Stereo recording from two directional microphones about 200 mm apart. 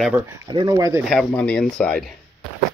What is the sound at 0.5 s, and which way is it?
Speech, 20° right (ahead or behind).